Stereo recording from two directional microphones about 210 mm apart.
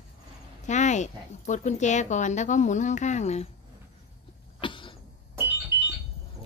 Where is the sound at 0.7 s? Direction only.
35° left (ahead or behind).